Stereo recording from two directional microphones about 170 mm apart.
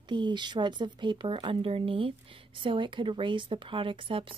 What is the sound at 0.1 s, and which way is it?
Speech, 25° right (ahead or behind).